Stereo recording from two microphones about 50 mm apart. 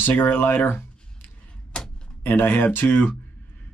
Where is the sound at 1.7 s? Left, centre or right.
Left.